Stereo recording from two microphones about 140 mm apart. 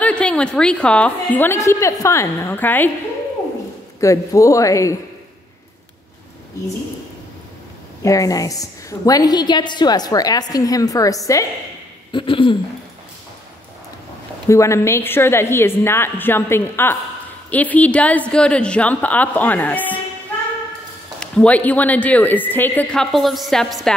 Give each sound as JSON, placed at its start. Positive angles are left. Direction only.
{"t": 0.0, "sound": "a woman's voice", "side_deg": 10}
{"t": 4.0, "sound": "a woman's voice", "side_deg": 20}
{"t": 8.0, "sound": "a woman's voice", "side_deg": 25}
{"t": 12.1, "sound": "a sound", "side_deg": 35}
{"t": 14.5, "sound": "a woman's voice", "side_deg": 20}
{"t": 21.2, "sound": "a woman's voice", "side_deg": 10}